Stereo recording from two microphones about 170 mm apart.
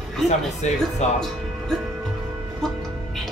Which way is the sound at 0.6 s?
40° left (ahead or behind).